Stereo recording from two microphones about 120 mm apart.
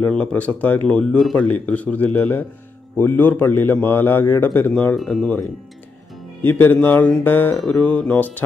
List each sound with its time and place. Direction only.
0.0 s a man's voice: 10° left (ahead or behind)
6.4 s a man's voice: 15° left (ahead or behind)